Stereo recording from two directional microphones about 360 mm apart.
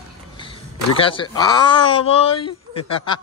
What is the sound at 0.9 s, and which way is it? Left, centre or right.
Speech, centre.